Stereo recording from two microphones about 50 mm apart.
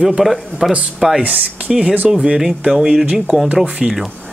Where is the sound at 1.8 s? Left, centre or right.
Right.